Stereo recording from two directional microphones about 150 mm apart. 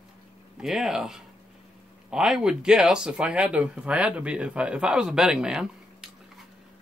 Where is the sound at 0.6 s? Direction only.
5° right (ahead or behind).